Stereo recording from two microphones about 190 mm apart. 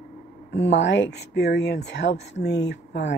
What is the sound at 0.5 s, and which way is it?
A woman's voice, 65° left (ahead or behind).